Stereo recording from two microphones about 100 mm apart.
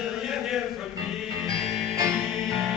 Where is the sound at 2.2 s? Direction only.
5° left (ahead or behind).